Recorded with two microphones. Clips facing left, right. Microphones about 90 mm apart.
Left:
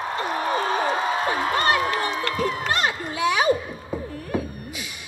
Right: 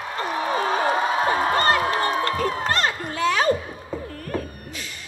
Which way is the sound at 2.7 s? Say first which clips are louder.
Right 1 dB; 10° left (ahead or behind).